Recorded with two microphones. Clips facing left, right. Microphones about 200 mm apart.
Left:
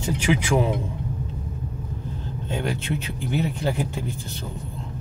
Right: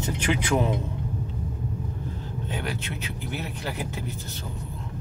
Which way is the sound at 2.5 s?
25° left (ahead or behind).